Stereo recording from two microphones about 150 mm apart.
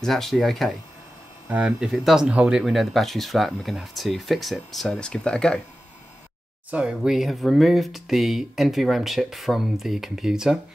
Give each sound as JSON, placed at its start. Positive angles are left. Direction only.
{"t": 0.0, "sound": "speech", "side_deg": 0}
{"t": 6.7, "sound": "speech", "side_deg": -5}